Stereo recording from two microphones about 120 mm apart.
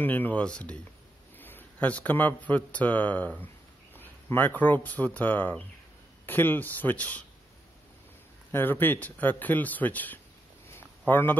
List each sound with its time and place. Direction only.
0.0 s a man's voice: 15° left (ahead or behind)
8.5 s a man's voice: 15° left (ahead or behind)
10.7 s a sound: 15° left (ahead or behind)